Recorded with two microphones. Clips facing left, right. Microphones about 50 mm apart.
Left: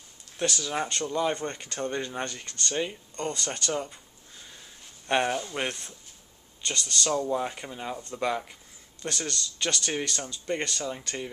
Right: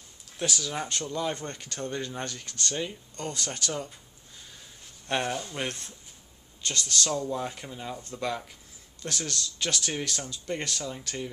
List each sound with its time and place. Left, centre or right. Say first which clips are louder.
0.4 s speech: left 2 dB; centre
3.2 s speech: left 2 dB; centre
5.0 s speech: left 4 dB; centre
7.1 s speech: left 3 dB; centre
9.0 s speech: left 1 dB; centre